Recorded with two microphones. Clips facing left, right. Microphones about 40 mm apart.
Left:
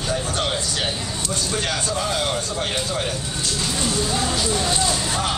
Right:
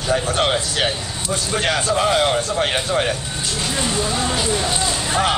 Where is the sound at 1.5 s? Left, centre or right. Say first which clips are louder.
Right 7 dB; right.